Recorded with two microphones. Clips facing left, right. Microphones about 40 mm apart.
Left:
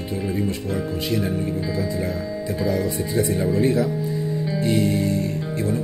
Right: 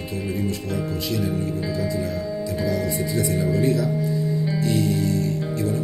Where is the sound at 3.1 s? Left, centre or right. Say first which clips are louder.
Left 2 dB; left.